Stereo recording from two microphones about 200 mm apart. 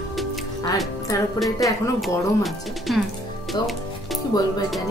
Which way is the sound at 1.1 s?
15° left (ahead or behind).